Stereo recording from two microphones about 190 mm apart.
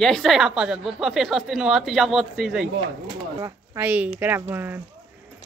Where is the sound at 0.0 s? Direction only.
Centre (ahead or behind).